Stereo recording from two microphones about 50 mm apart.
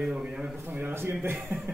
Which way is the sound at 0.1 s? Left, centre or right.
Centre.